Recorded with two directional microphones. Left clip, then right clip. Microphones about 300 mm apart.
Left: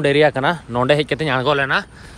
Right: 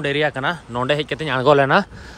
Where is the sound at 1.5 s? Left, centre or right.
Right.